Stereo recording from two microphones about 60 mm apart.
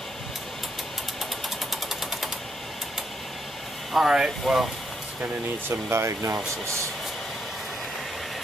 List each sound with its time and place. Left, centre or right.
1.7 s a sound: centre
3.9 s speech: centre
5.7 s speech: right